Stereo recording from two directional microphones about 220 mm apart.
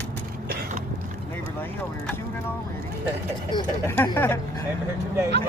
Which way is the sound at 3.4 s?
20° left (ahead or behind).